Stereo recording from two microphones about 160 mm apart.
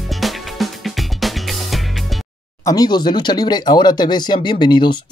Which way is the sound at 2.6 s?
25° left (ahead or behind).